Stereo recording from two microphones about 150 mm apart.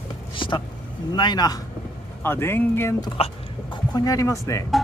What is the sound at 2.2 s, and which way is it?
Speech, 15° left (ahead or behind).